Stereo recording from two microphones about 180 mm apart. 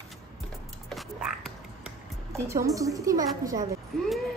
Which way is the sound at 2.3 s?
15° right (ahead or behind).